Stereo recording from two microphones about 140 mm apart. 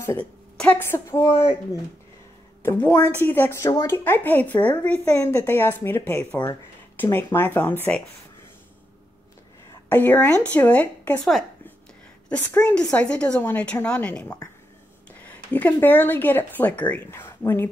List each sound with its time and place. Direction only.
0.0 s a woman's voice: 20° left (ahead or behind)
9.8 s speech: 10° left (ahead or behind)